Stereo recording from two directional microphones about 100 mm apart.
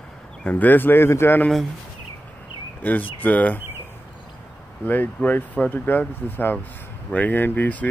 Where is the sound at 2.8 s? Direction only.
15° left (ahead or behind).